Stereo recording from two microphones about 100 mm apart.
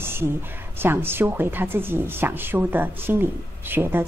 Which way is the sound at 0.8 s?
25° right (ahead or behind).